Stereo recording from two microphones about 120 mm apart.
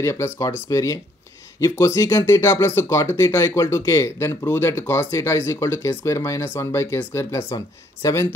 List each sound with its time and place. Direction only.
0.0 s speech: 25° left (ahead or behind)